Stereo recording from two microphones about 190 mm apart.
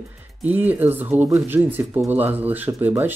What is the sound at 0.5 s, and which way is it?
Speech, 10° right (ahead or behind).